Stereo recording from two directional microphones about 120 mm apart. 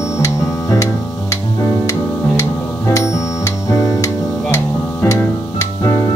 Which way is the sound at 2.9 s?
25° left (ahead or behind).